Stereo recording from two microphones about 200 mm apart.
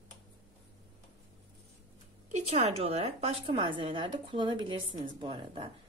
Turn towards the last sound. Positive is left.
turn(degrees=-25)  # may be behind; listen again after turning